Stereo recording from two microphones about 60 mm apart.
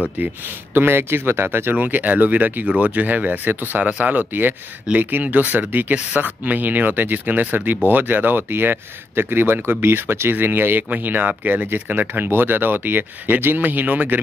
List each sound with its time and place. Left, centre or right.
0.2 s speech: right